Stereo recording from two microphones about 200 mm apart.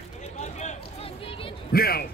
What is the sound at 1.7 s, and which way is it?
Speech, 50° left (ahead or behind).